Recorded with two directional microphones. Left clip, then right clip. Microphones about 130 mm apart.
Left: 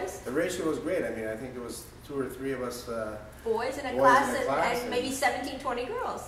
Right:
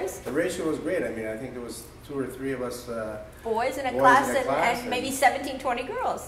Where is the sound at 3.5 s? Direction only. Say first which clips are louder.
Right 5 dB; 15° right (ahead or behind).